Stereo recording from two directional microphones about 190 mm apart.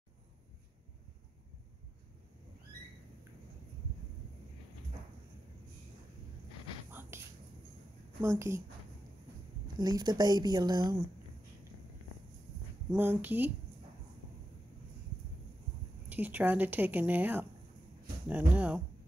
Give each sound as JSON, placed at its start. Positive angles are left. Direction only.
{"t": 6.9, "sound": "a sound", "side_deg": -10}
{"t": 8.2, "sound": "a woman's voice", "side_deg": -15}
{"t": 9.8, "sound": "speech", "side_deg": -20}
{"t": 12.9, "sound": "a woman's voice", "side_deg": -10}
{"t": 16.1, "sound": "a woman's voice", "side_deg": -10}